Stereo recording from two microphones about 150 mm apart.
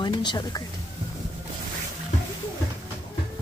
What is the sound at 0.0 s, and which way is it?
Speech, 30° left (ahead or behind).